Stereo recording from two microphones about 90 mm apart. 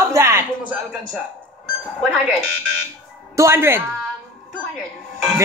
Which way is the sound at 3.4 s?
30° right (ahead or behind).